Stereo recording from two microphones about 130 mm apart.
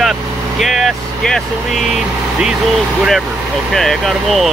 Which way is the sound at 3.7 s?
Centre (ahead or behind).